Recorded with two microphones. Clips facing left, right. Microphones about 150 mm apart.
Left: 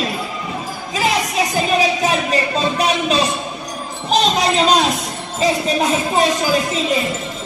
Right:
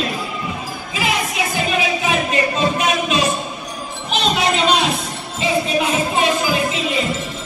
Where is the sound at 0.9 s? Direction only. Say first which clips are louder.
Left 3 dB; 40° left (ahead or behind).